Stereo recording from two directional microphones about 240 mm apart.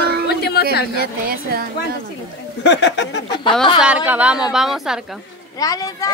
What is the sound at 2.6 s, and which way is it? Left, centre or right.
Speech, left.